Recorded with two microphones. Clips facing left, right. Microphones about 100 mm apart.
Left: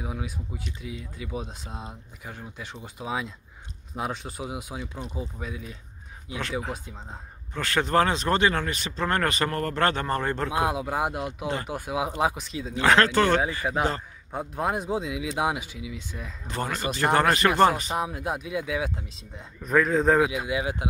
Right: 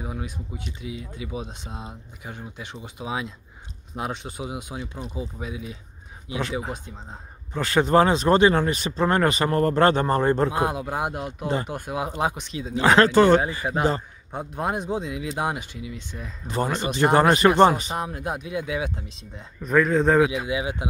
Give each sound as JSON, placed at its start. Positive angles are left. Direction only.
{"t": 0.0, "sound": "speech", "side_deg": 0}
{"t": 7.5, "sound": "speech", "side_deg": -10}
{"t": 10.5, "sound": "speech", "side_deg": 0}
{"t": 12.8, "sound": "speech", "side_deg": -15}
{"t": 16.4, "sound": "speech", "side_deg": -10}
{"t": 17.9, "sound": "speech", "side_deg": 0}